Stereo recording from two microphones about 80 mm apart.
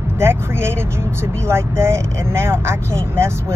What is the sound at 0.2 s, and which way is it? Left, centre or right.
Speech, right.